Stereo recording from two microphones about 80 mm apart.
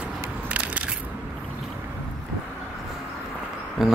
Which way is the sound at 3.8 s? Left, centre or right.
Centre.